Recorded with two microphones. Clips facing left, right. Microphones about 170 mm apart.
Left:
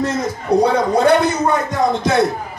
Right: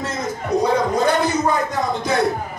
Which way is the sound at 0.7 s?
65° left (ahead or behind).